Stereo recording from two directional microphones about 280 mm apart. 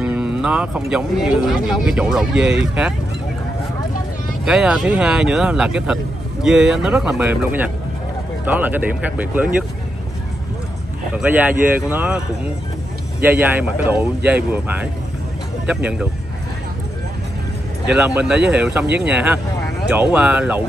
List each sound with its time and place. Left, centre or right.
0.0 s speech: centre
4.5 s speech: centre
11.1 s speech: centre
13.2 s speech: centre
17.8 s speech: centre